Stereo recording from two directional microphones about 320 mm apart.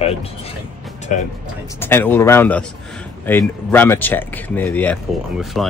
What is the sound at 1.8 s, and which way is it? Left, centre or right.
Speech, centre.